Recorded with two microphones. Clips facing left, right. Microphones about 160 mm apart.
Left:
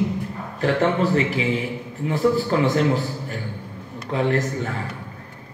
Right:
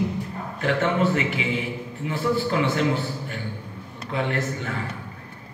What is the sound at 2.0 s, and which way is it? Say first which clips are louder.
Speech: left 4 dB; 40° left (ahead or behind).